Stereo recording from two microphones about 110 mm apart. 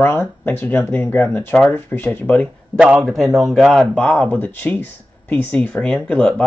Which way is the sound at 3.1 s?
Centre (ahead or behind).